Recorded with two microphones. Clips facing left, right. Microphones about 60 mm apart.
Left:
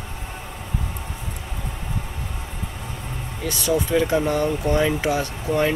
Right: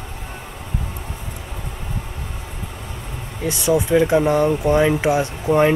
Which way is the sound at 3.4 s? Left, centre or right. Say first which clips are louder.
Right 4 dB; right.